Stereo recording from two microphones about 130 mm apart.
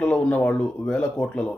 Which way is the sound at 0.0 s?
10° left (ahead or behind).